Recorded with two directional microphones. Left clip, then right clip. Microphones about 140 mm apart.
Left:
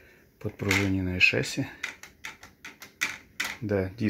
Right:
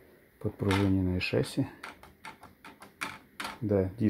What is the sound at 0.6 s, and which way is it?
Speech, 15° right (ahead or behind).